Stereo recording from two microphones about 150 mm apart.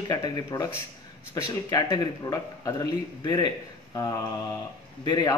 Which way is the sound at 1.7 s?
25° left (ahead or behind).